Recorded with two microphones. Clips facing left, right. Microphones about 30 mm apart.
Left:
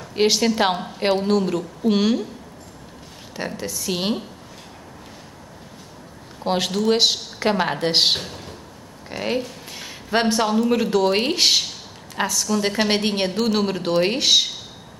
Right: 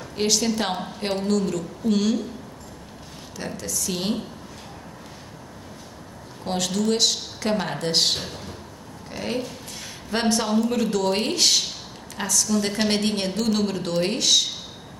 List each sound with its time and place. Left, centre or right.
0.1 s a woman's voice: left
3.3 s a woman's voice: left
6.4 s a woman's voice: left
8.2 s speech: centre
9.1 s a sound: left
10.7 s a woman's voice: centre